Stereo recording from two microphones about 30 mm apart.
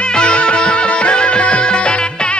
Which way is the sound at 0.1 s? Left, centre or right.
Left.